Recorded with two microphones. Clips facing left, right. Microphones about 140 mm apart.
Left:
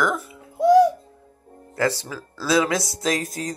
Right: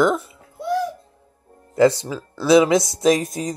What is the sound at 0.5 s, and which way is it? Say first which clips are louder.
Music: left 9 dB; 90° left.